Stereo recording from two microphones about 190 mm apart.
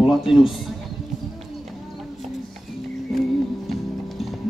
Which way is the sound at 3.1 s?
Centre (ahead or behind).